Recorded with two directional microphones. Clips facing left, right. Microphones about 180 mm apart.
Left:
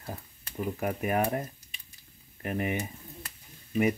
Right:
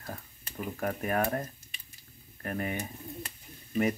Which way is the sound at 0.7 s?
15° left (ahead or behind).